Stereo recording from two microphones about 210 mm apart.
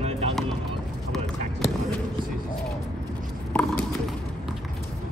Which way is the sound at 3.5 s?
5° left (ahead or behind).